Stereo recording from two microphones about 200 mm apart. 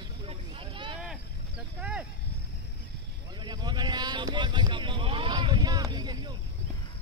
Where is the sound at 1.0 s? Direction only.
5° right (ahead or behind).